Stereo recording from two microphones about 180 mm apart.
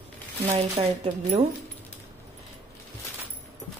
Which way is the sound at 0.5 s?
35° right (ahead or behind).